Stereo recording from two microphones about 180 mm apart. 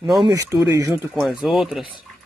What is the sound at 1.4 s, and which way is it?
Speech, centre (ahead or behind).